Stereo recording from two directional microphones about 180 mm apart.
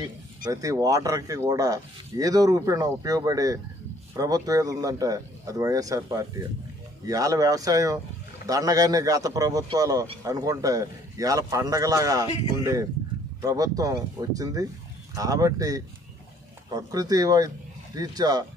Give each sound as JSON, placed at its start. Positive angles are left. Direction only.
{"t": 0.5, "sound": "speech", "side_deg": -20}
{"t": 13.4, "sound": "speech", "side_deg": -20}